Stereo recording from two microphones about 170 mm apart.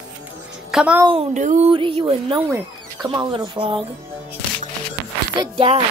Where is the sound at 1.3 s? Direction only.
45° right (ahead or behind).